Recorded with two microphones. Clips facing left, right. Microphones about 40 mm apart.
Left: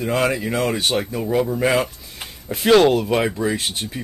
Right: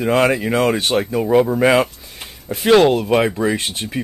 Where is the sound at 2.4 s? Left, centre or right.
Centre; by 4.0 s right.